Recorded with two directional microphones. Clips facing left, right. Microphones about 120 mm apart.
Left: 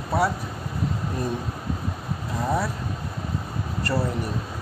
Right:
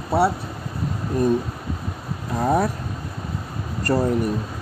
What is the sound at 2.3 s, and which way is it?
Speech, 55° right (ahead or behind).